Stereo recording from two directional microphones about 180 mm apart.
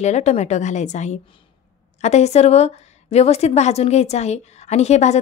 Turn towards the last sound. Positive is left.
turn(degrees=40)  # may be behind; listen again after turning